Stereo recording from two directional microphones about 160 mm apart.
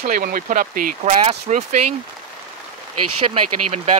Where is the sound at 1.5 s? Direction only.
45° right (ahead or behind).